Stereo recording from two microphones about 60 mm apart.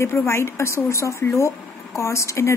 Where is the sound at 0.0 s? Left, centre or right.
Left.